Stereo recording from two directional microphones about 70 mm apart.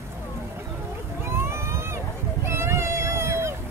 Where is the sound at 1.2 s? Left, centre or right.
Right.